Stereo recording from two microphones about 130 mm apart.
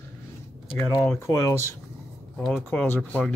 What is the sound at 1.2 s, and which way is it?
Speech, 20° left (ahead or behind).